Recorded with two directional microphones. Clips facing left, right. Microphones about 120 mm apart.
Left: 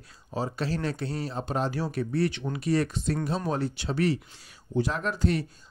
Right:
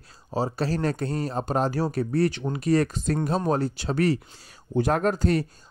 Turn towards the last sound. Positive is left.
turn(degrees=-40)  # may be behind; listen again after turning